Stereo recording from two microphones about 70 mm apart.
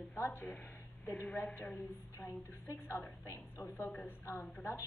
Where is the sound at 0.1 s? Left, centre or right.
Left.